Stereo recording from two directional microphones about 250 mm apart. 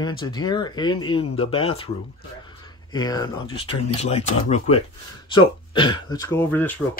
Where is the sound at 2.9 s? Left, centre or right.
Centre.